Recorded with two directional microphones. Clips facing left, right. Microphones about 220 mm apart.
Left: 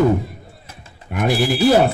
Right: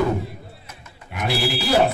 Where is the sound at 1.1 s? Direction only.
50° left (ahead or behind).